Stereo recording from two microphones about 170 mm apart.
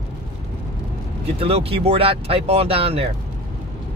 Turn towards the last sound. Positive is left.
turn(degrees=-35)  # may be behind; listen again after turning